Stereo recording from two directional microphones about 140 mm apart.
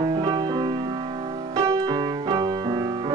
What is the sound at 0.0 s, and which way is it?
Music, 35° right (ahead or behind).